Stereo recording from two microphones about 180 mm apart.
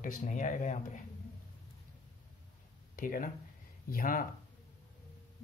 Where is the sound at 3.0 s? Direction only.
50° left (ahead or behind).